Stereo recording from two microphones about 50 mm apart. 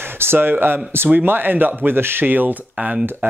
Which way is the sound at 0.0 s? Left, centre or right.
Right.